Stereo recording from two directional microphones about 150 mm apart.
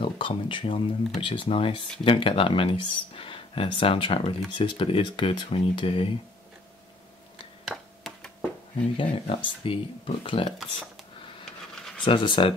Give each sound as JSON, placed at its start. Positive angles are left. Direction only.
{"t": 0.0, "sound": "speech", "side_deg": 35}
{"t": 7.6, "sound": "a sound", "side_deg": 0}
{"t": 8.9, "sound": "speech", "side_deg": 35}
{"t": 12.0, "sound": "speech", "side_deg": 30}